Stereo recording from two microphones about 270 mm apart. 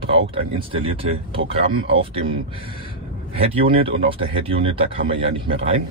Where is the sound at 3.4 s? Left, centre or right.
Centre.